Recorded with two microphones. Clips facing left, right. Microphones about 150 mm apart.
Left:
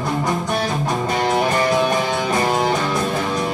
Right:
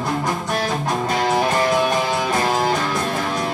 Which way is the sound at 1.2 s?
Centre (ahead or behind).